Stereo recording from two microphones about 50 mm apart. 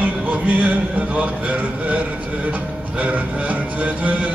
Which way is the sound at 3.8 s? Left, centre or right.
Right.